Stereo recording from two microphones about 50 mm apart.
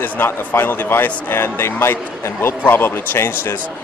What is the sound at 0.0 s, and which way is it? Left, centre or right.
A man's voice, left.